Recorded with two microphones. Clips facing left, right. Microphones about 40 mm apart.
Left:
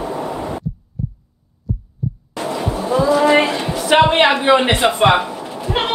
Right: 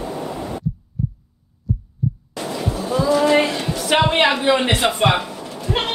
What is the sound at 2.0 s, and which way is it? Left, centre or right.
Heart murmur, centre.